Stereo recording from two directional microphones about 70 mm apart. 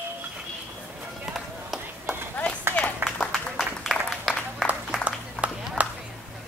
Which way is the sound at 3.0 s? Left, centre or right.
Right.